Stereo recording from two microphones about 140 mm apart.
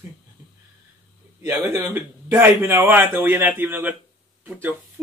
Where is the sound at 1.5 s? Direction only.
20° right (ahead or behind).